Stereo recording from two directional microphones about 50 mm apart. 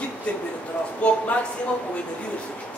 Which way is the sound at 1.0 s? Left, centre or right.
Left.